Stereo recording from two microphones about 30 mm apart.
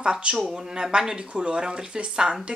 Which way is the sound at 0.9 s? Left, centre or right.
Right.